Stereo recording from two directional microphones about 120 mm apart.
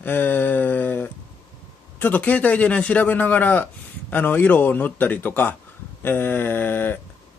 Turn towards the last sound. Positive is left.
turn(degrees=15)  # may be behind; listen again after turning